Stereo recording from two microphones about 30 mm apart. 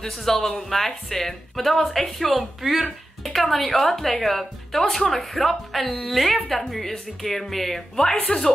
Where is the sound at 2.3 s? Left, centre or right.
Centre.